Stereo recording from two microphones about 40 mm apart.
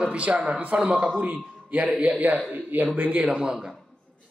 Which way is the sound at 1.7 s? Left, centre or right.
Right.